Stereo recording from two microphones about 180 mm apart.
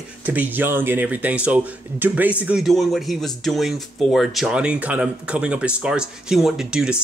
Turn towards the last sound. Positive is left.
turn(degrees=-5)  # may be behind; listen again after turning